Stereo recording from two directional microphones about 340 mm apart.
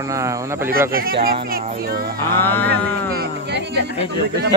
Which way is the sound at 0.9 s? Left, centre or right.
Right.